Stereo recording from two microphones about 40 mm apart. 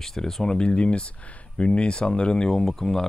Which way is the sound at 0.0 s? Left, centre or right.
Centre.